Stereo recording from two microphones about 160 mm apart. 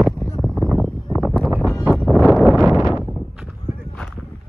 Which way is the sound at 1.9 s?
Centre (ahead or behind).